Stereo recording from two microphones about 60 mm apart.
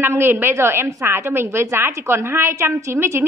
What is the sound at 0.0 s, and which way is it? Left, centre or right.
A woman's voice, right.